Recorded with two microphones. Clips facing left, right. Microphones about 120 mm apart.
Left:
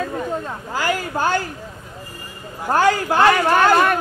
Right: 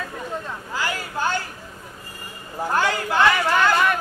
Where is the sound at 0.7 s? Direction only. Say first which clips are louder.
Left 5 dB; 45° left (ahead or behind).